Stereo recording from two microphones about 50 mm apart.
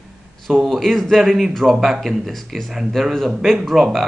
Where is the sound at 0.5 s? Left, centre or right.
Centre.